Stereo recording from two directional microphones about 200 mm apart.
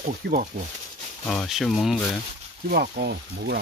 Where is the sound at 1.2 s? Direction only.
Centre (ahead or behind).